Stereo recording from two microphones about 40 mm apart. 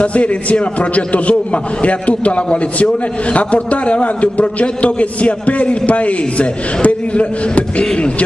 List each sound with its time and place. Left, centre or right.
0.0 s a man's voice: left
7.8 s speech: centre